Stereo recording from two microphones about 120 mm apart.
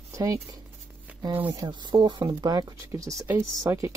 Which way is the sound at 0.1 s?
25° right (ahead or behind).